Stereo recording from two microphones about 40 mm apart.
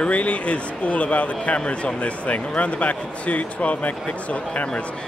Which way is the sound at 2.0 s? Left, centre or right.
Left.